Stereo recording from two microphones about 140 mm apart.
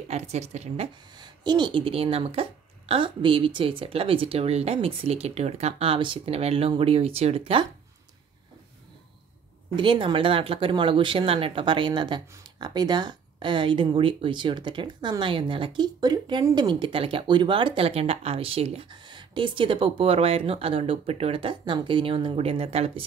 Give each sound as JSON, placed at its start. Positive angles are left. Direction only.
{"t": 0.1, "sound": "speech", "side_deg": -50}
{"t": 1.1, "sound": "speech", "side_deg": -30}
{"t": 9.8, "sound": "speech", "side_deg": -35}